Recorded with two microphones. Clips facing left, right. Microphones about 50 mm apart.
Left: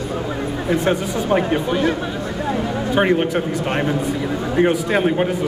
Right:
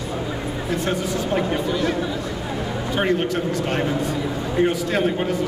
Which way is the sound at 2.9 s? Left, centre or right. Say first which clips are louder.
Left 4 dB; centre.